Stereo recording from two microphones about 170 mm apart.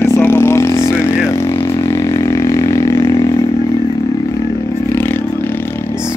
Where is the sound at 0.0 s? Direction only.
15° left (ahead or behind).